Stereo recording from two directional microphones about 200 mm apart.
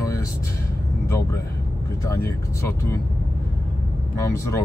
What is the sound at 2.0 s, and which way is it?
Speech, 15° left (ahead or behind).